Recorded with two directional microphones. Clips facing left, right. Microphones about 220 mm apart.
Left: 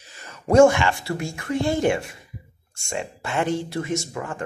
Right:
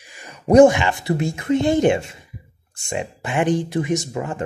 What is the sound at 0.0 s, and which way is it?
Speech, 15° right (ahead or behind).